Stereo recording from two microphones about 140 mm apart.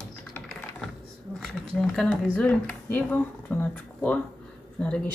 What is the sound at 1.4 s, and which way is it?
Speech, 5° left (ahead or behind).